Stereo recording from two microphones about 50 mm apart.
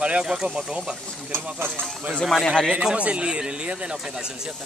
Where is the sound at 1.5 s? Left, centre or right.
Right.